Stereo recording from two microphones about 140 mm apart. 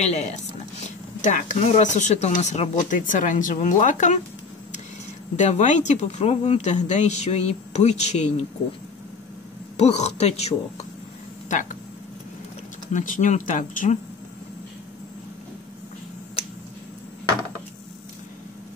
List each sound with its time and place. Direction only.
0.0 s speech: 50° left (ahead or behind)
5.3 s speech: 55° left (ahead or behind)
9.8 s a woman's voice: 50° left (ahead or behind)
12.9 s speech: 65° left (ahead or behind)